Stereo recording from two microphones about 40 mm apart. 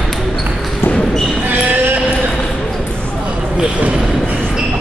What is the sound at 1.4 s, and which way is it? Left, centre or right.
Basketball bounce, right.